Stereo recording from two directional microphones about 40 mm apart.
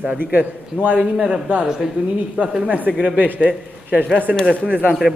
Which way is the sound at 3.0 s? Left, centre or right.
Right.